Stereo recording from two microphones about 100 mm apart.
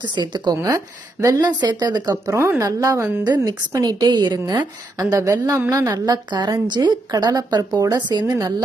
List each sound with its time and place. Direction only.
0.1 s speech: 45° right (ahead or behind)
0.6 s a woman's voice: 35° right (ahead or behind)